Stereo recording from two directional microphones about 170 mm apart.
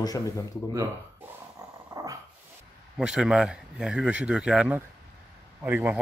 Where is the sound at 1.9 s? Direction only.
20° right (ahead or behind).